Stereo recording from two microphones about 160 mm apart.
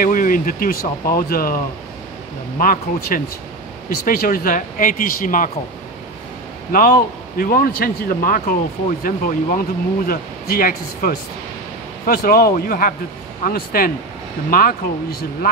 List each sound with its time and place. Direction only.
0.0 s speech: 60° left (ahead or behind)
2.6 s speech: 60° left (ahead or behind)
6.7 s speech: 65° left (ahead or behind)